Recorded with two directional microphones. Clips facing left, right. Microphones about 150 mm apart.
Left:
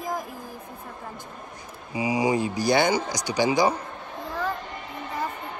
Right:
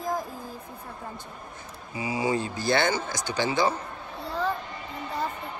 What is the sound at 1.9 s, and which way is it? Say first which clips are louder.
Speech: left 4 dB; 15° left (ahead or behind).